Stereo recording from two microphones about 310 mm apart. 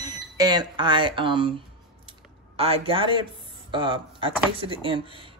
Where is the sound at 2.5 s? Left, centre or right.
Centre.